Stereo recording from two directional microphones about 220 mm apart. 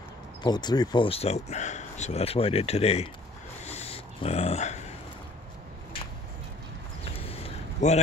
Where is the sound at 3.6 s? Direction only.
30° left (ahead or behind).